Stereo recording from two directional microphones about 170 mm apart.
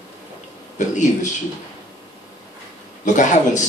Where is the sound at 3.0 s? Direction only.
45° left (ahead or behind).